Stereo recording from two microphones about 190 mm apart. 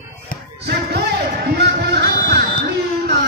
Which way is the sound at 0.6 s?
55° right (ahead or behind).